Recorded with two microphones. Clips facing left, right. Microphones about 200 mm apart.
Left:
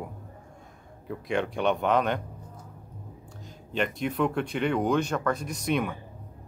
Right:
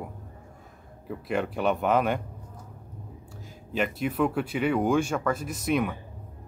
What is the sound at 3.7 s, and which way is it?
Speech, 5° right (ahead or behind).